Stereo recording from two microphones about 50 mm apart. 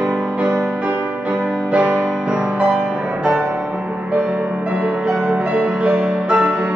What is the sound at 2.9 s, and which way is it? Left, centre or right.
Music, centre.